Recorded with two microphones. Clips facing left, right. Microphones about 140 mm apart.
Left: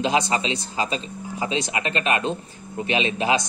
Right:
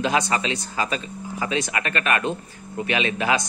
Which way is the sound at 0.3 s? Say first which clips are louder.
Even; 20° left (ahead or behind).